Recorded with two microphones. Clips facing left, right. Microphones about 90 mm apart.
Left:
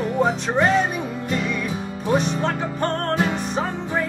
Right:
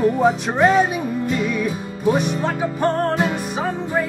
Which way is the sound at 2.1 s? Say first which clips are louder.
Even; 10° right (ahead or behind).